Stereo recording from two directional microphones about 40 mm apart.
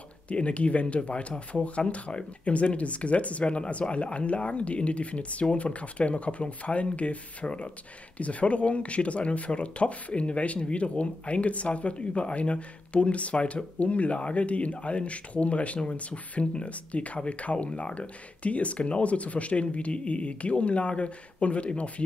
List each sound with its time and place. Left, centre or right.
0.3 s speech: left